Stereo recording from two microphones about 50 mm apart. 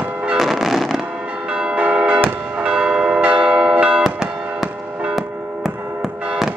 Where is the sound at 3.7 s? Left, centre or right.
Right.